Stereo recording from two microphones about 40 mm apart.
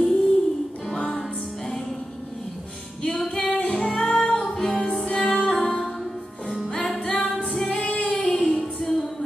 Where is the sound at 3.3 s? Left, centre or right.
Left.